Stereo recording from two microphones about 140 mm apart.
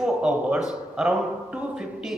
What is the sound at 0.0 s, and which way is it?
A man's voice, 5° right (ahead or behind).